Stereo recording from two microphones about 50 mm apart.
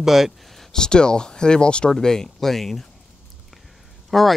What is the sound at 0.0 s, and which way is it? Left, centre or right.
Speech, centre.